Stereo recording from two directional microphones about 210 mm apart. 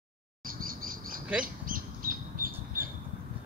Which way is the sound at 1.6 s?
40° right (ahead or behind).